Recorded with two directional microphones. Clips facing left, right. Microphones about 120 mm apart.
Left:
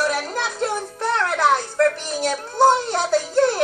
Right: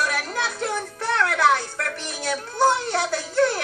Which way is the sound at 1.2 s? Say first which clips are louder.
Even; 30° left (ahead or behind).